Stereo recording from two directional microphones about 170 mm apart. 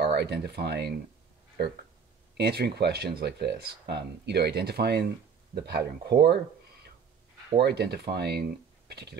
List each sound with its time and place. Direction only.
0.0 s speech: 70° right (ahead or behind)
2.3 s speech: 70° right (ahead or behind)
7.6 s speech: 70° right (ahead or behind)